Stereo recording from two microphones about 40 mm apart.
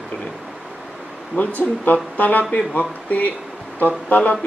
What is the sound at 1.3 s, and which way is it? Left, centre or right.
Speech, left.